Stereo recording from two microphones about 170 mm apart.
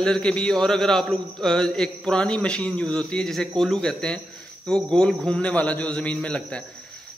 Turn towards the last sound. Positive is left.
turn(degrees=5)  # may be behind; listen again after turning